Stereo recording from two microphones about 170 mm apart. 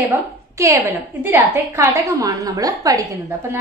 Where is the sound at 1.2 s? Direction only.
15° right (ahead or behind).